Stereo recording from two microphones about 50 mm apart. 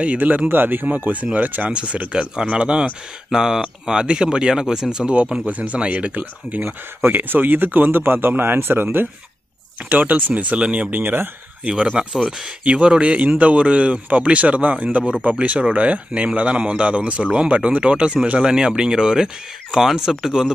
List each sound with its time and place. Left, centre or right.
0.0 s speech: right
1.7 s speech: right
3.3 s speech: centre
5.1 s speech: right
6.6 s speech: right
11.6 s speech: right